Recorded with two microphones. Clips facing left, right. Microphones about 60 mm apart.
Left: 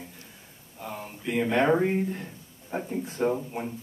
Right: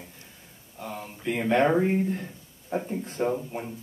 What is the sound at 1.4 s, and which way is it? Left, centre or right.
Speech, right.